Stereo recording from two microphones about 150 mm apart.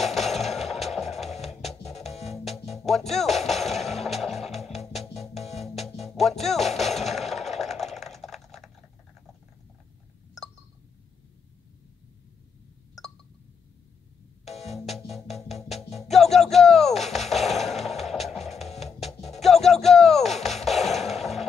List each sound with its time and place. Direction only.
0.0 s music: centre (ahead or behind)
5.3 s music: 45° left (ahead or behind)
5.6 s music: centre (ahead or behind)
14.4 s music: 45° left (ahead or behind)
14.7 s music: centre (ahead or behind)